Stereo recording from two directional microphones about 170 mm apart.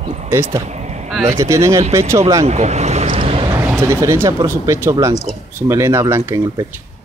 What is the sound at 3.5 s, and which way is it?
Speech, 15° right (ahead or behind).